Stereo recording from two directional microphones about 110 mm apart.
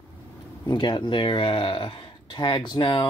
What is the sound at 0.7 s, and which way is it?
Speech, 45° left (ahead or behind).